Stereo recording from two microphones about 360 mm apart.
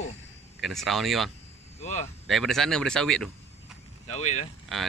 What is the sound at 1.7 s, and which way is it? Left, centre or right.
Speech, centre.